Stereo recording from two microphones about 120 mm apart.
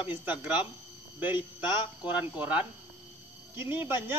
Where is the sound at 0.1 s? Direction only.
15° right (ahead or behind).